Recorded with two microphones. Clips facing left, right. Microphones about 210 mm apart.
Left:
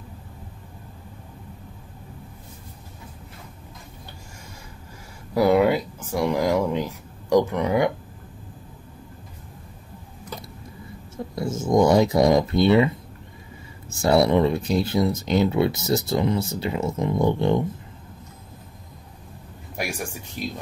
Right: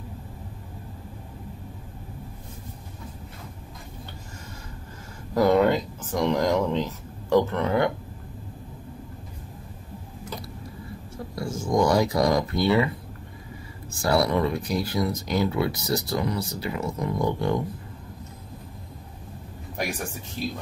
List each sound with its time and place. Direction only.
5.3 s speech: 10° left (ahead or behind)
11.3 s speech: 20° left (ahead or behind)
13.8 s speech: 25° left (ahead or behind)
19.8 s speech: 10° left (ahead or behind)